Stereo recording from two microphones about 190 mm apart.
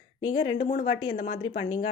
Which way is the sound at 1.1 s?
45° left (ahead or behind).